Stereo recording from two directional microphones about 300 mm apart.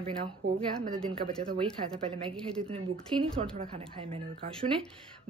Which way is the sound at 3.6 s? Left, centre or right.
Centre.